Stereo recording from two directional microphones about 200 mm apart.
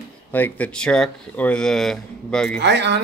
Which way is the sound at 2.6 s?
60° right (ahead or behind).